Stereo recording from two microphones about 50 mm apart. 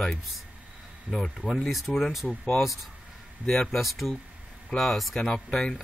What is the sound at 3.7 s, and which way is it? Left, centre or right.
Speech, centre.